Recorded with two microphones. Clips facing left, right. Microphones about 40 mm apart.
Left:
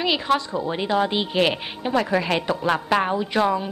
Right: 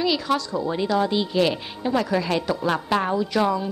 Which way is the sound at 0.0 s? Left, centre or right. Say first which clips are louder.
Left 1 dB; left.